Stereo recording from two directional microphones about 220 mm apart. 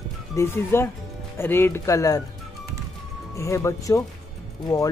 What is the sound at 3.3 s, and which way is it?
Speech, 15° left (ahead or behind).